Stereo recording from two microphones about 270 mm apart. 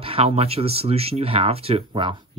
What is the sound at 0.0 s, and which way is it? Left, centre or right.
Speech, right.